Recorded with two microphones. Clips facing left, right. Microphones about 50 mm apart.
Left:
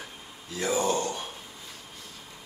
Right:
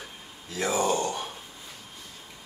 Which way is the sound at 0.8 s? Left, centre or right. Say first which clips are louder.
Right 1 dB; right.